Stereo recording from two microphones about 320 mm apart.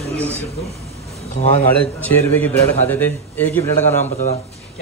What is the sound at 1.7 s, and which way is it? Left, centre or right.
A man's voice, centre.